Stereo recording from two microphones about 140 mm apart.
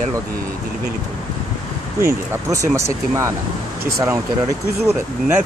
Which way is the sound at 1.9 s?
20° right (ahead or behind).